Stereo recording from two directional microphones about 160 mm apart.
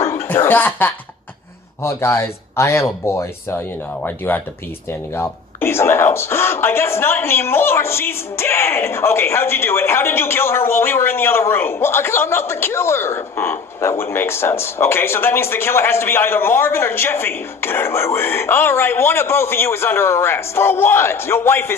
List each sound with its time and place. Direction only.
0.1 s chuckle: 15° left (ahead or behind)
1.8 s a man's voice: 15° left (ahead or behind)